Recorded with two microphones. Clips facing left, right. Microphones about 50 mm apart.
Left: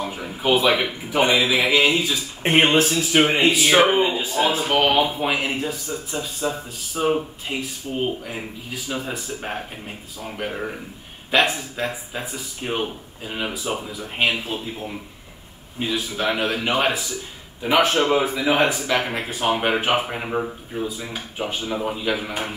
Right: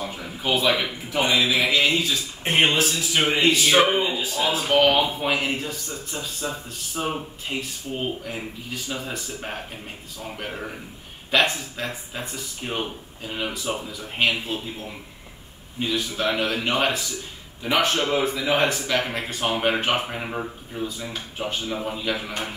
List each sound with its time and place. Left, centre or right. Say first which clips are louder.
0.0 s a man's voice: left 4 dB; centre
2.4 s speech: left 4 dB; left
3.2 s speech: left 3 dB; centre
4.2 s speech: left 3 dB; left
4.6 s speech: right 4 dB; centre
12.8 s speech: left 3 dB; centre